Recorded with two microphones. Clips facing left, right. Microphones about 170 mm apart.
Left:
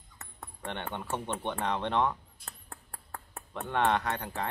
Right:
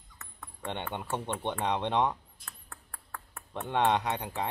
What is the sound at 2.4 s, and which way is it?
Ping, 30° left (ahead or behind).